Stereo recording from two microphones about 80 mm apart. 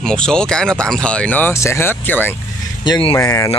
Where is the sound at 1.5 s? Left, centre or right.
Left.